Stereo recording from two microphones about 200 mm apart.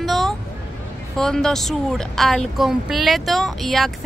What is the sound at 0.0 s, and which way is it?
Vehicle, centre (ahead or behind).